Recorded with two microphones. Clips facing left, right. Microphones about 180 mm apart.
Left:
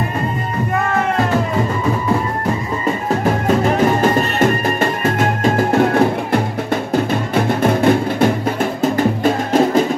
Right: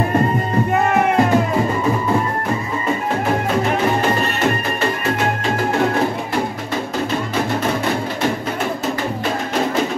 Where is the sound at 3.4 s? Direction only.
45° left (ahead or behind).